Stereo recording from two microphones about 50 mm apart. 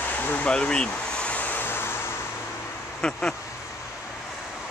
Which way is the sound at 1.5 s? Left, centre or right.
Left.